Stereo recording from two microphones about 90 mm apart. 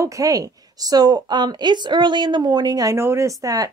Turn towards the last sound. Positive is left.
turn(degrees=-40)  # may be behind; listen again after turning